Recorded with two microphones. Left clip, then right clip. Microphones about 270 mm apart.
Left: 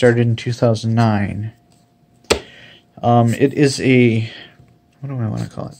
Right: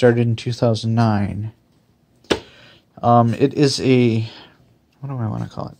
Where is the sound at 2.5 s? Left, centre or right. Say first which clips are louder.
Left 5 dB; right.